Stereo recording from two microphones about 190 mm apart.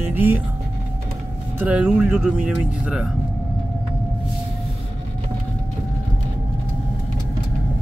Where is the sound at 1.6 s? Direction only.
5° right (ahead or behind).